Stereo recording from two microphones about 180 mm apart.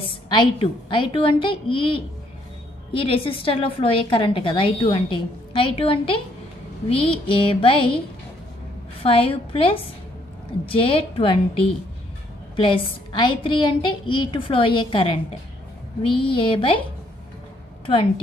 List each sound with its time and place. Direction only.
0.3 s a woman's voice: 25° left (ahead or behind)
9.0 s a woman's voice: 30° left (ahead or behind)
16.2 s a woman's voice: 30° left (ahead or behind)